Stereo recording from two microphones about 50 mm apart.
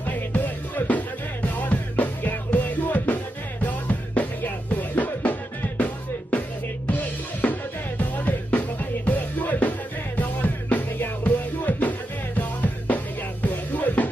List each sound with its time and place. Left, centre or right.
0.0 s music: left
6.9 s drum kit: left
8.5 s music: left